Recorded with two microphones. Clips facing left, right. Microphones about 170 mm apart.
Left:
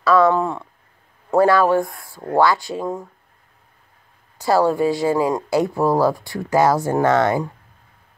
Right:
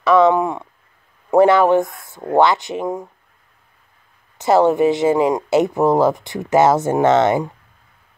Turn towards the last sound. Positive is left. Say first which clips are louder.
# right 3 dB
turn(degrees=-20)  # may be behind; listen again after turning